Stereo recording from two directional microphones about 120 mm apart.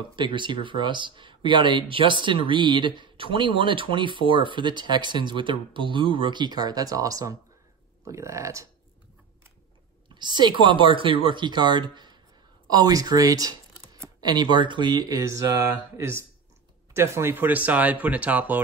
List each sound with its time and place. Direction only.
0.1 s speech: 40° right (ahead or behind); by 8.6 s 25° right (ahead or behind)
10.0 s speech: 40° right (ahead or behind); by 18.6 s 15° right (ahead or behind)